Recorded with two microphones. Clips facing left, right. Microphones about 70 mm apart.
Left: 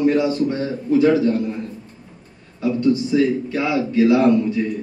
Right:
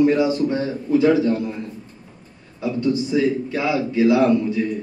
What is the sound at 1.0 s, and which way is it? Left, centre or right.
Speech, centre.